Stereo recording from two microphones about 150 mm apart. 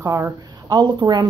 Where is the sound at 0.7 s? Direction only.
30° right (ahead or behind).